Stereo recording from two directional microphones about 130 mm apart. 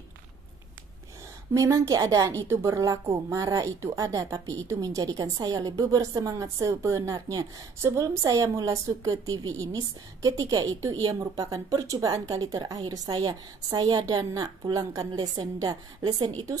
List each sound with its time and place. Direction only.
1.5 s a woman's voice: 25° right (ahead or behind)